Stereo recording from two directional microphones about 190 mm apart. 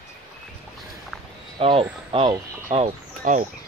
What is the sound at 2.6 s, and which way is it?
Speech, 40° right (ahead or behind).